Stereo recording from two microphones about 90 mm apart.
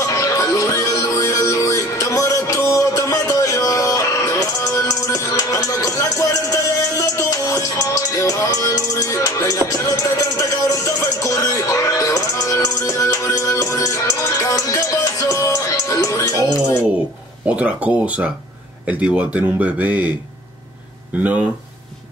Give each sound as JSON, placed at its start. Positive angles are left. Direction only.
{"t": 0.0, "sound": "music", "side_deg": 35}
{"t": 17.5, "sound": "a man's voice", "side_deg": -15}
{"t": 21.2, "sound": "a man's voice", "side_deg": -15}